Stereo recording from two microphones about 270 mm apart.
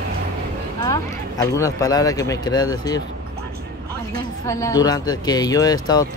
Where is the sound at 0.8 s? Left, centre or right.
Centre.